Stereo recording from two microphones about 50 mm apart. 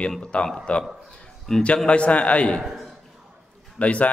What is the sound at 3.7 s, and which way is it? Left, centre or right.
Speech, left.